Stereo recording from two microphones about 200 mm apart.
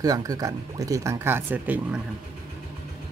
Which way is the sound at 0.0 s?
20° right (ahead or behind).